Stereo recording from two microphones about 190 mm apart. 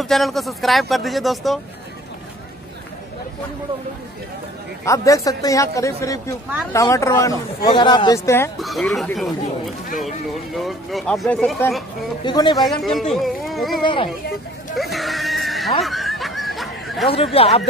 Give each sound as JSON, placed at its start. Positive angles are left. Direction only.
{"t": 0.0, "sound": "speech", "side_deg": 0}
{"t": 4.8, "sound": "speech", "side_deg": 15}
{"t": 8.5, "sound": "speech", "side_deg": 0}
{"t": 12.3, "sound": "speech", "side_deg": 25}
{"t": 12.8, "sound": "speech", "side_deg": 0}
{"t": 14.8, "sound": "music", "side_deg": 0}
{"t": 15.8, "sound": "snicker", "side_deg": 0}
{"t": 17.1, "sound": "speech", "side_deg": 30}